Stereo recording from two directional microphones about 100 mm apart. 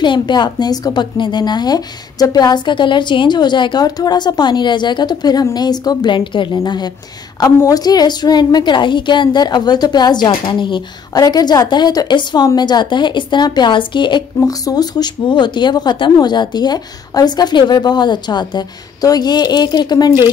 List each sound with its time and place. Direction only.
0.0 s a woman's voice: 50° left (ahead or behind)
14.4 s a woman's voice: 35° left (ahead or behind)